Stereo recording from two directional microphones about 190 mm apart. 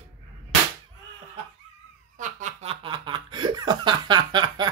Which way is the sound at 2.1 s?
40° right (ahead or behind).